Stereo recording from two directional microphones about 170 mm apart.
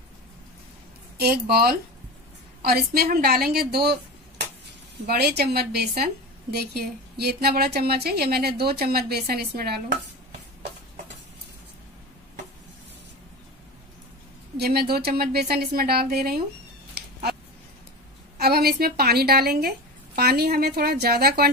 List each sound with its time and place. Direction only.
1.1 s a woman's voice: 65° right (ahead or behind)
14.6 s a woman's voice: 65° right (ahead or behind)
18.4 s a woman's voice: 65° right (ahead or behind)